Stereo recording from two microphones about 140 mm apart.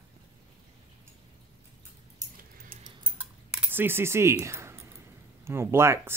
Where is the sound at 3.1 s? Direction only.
15° right (ahead or behind).